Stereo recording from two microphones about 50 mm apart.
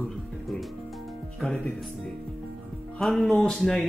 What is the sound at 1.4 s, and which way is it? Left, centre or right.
Speech, centre.